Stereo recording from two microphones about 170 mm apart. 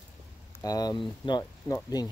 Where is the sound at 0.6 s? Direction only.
20° left (ahead or behind).